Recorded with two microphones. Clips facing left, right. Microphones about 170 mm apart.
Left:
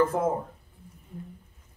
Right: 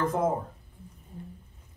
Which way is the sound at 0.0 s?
5° left (ahead or behind).